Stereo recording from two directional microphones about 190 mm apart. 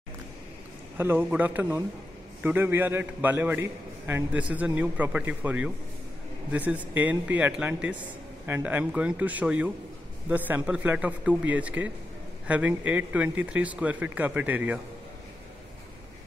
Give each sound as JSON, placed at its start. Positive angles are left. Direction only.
{"t": 0.9, "sound": "a man's voice", "side_deg": -10}